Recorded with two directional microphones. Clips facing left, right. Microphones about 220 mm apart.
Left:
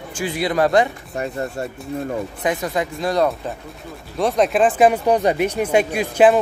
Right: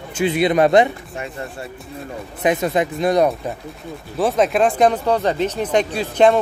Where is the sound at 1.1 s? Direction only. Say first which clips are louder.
Left 5 dB; 40° left (ahead or behind).